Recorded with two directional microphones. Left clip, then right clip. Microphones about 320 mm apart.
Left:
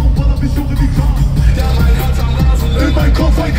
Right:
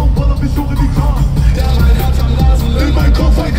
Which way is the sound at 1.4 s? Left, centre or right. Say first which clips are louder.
Left 1 dB; left.